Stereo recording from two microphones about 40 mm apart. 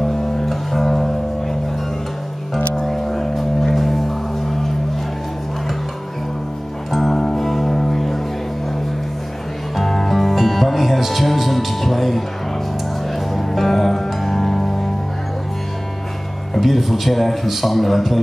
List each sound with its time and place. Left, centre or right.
0.0 s music: centre
2.7 s music: centre
6.9 s music: centre
9.8 s music: centre
16.5 s a man's voice: centre